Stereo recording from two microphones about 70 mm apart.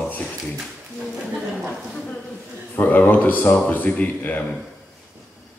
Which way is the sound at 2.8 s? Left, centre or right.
Left.